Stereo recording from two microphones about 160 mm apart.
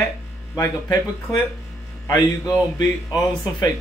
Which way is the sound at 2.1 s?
25° left (ahead or behind).